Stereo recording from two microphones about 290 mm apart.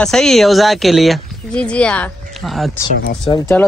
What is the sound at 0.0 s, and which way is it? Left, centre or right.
Speech, centre.